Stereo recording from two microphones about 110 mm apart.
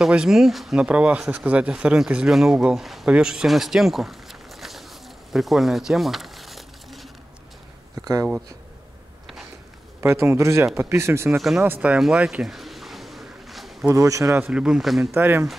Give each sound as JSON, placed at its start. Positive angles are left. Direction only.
{"t": 0.0, "sound": "speech", "side_deg": -5}
{"t": 5.3, "sound": "crumpling", "side_deg": 0}
{"t": 8.0, "sound": "speech", "side_deg": -35}
{"t": 9.9, "sound": "a man's voice", "side_deg": -25}
{"t": 11.2, "sound": "speech", "side_deg": -5}
{"t": 11.6, "sound": "a sound", "side_deg": -15}
{"t": 13.8, "sound": "a man's voice", "side_deg": -30}
{"t": 14.4, "sound": "speech", "side_deg": -10}
{"t": 15.0, "sound": "a man's voice", "side_deg": -20}